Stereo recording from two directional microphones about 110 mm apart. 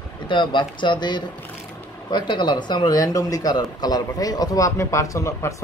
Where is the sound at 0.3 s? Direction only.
45° left (ahead or behind).